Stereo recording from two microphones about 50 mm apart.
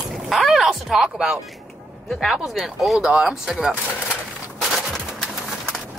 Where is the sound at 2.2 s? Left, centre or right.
Centre.